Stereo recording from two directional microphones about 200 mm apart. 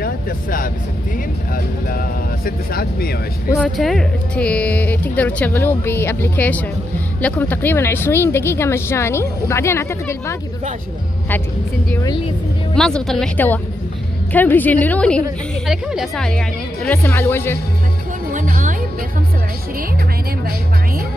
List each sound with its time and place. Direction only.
0.0 s speech: 45° left (ahead or behind)
3.5 s speech: centre (ahead or behind)
11.9 s speech: 20° left (ahead or behind)
12.7 s speech: 5° left (ahead or behind)
18.3 s music: 40° right (ahead or behind)